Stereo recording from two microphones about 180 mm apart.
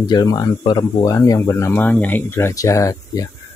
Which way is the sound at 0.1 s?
20° left (ahead or behind).